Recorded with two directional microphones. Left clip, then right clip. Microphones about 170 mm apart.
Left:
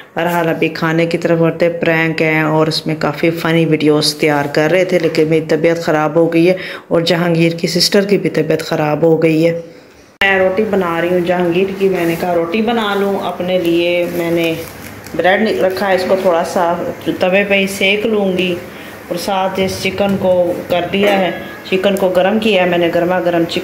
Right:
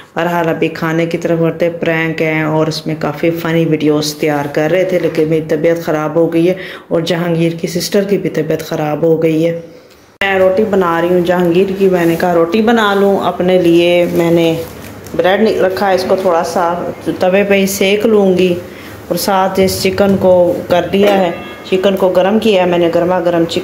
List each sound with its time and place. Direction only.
0.2 s speech: 5° right (ahead or behind)
10.2 s speech: 10° right (ahead or behind)
12.4 s speech: 35° right (ahead or behind)
15.1 s speech: 15° right (ahead or behind)
16.3 s speech: centre (ahead or behind)
17.3 s a woman's voice: 25° right (ahead or behind)
20.9 s speech: 20° right (ahead or behind)